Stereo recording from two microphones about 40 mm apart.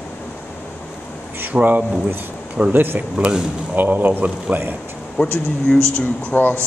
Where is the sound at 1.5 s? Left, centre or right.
Right.